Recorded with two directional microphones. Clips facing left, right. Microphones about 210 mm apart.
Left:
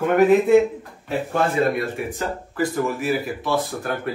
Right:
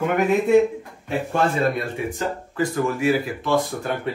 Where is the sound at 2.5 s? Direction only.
Centre (ahead or behind).